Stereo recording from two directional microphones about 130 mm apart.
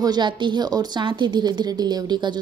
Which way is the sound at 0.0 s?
35° right (ahead or behind).